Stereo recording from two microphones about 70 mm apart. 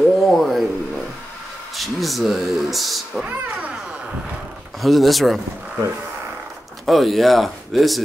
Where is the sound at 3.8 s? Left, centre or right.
Centre.